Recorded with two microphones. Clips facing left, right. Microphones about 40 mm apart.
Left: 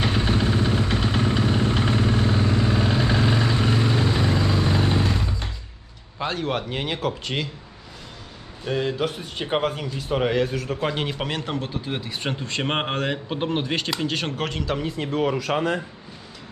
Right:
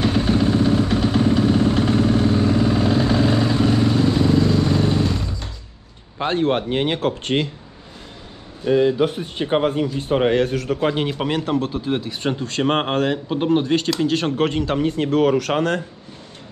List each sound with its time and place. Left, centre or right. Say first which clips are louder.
0.0 s vehicle: right 4 dB; centre
6.1 s speech: right 6 dB; right
9.9 s speech: right 3 dB; right
10.8 s speech: right 5 dB; centre
14.3 s a man's voice: right 8 dB; centre
14.9 s speech: right 7 dB; right